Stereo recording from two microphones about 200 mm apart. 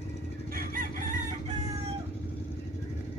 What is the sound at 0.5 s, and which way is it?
Chicken, 45° right (ahead or behind).